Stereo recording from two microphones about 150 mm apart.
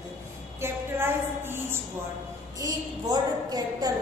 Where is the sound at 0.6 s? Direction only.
15° right (ahead or behind).